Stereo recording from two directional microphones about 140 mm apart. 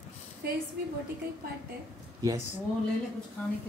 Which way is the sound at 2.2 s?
25° right (ahead or behind).